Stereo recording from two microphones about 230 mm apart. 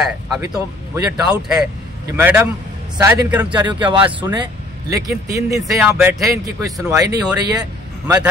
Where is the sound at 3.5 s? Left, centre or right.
Right.